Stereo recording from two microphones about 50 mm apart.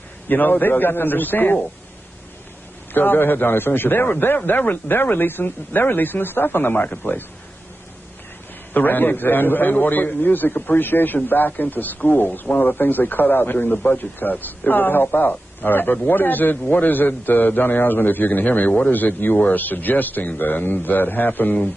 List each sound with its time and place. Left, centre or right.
0.3 s a man's voice: left
2.9 s a man's voice: left
8.7 s a man's voice: left